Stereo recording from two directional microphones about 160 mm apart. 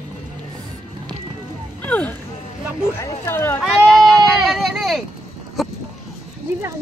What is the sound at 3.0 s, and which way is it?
Speech, 15° left (ahead or behind).